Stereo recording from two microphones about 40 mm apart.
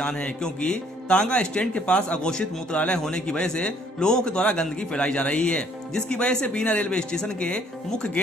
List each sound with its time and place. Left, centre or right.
0.0 s a man's voice: left